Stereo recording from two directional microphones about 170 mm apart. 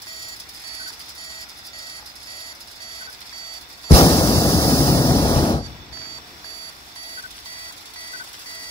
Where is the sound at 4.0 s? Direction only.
25° left (ahead or behind).